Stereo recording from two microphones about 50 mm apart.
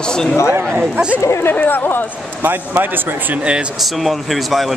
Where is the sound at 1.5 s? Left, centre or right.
Left.